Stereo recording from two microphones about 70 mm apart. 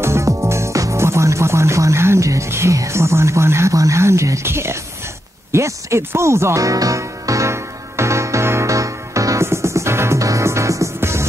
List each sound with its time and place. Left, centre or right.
0.0 s music: right